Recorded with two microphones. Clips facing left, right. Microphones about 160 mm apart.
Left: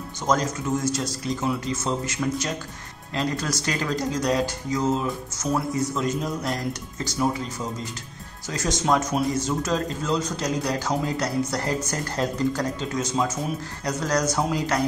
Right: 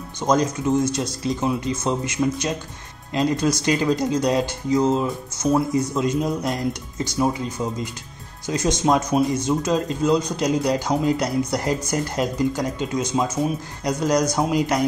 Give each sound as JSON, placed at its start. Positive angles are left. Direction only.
{"t": 0.2, "sound": "speech", "side_deg": -20}